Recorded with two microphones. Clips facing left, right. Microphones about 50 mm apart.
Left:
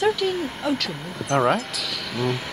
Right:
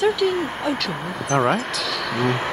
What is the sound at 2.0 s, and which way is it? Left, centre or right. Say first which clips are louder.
Speech: right 4 dB; right.